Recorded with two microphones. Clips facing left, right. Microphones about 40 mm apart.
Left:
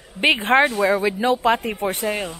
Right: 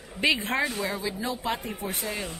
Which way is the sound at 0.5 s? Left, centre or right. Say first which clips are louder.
Left 11 dB; left.